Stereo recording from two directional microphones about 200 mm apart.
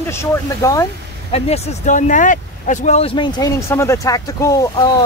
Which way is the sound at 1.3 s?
30° left (ahead or behind).